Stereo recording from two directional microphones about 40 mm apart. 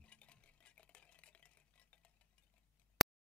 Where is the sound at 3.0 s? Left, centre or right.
Centre.